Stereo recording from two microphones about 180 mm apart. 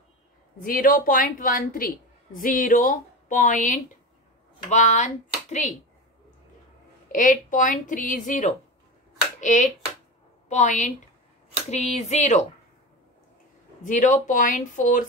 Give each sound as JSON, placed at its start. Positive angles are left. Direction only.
{"t": 0.6, "sound": "a man's voice", "side_deg": 50}
{"t": 7.1, "sound": "a man's voice", "side_deg": 45}
{"t": 13.8, "sound": "a man's voice", "side_deg": 45}